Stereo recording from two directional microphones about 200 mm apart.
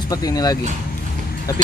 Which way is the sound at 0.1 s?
20° left (ahead or behind).